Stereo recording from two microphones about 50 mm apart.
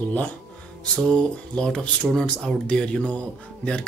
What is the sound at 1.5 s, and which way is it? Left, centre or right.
Speech, centre.